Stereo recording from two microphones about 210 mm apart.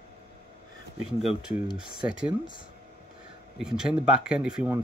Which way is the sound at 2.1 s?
5° right (ahead or behind).